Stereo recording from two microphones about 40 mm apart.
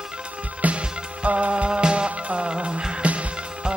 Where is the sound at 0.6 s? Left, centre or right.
Right.